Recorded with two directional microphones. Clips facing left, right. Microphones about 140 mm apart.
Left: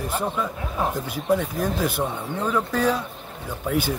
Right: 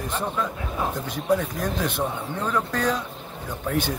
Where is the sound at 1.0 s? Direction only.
5° left (ahead or behind).